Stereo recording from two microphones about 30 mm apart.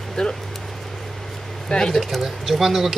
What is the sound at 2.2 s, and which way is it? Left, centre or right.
Speech, centre.